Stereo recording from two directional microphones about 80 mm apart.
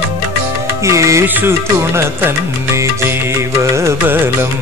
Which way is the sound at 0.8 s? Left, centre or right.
Right.